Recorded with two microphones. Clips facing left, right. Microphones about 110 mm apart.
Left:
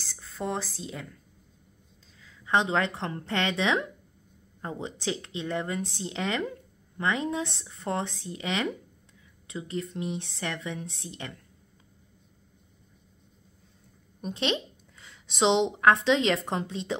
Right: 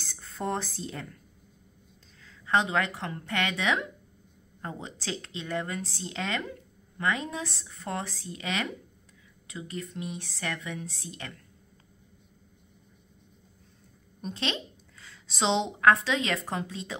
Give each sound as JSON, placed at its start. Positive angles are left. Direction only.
{"t": 0.0, "sound": "a sound", "side_deg": 0}
{"t": 2.2, "sound": "speech", "side_deg": 20}
{"t": 14.2, "sound": "a woman's voice", "side_deg": 20}